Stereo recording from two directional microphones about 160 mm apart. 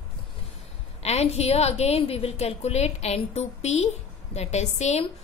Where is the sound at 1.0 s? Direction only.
40° left (ahead or behind).